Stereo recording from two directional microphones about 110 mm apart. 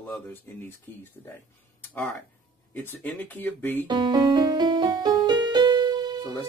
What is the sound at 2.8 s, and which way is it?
Speech, 15° left (ahead or behind).